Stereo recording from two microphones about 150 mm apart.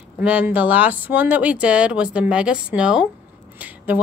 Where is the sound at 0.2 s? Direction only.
10° right (ahead or behind).